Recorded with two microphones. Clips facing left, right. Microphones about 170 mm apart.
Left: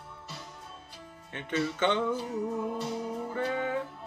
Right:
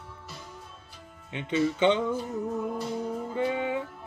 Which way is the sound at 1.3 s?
15° right (ahead or behind).